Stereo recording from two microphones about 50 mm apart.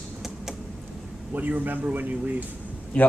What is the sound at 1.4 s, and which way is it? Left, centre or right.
Speech, right.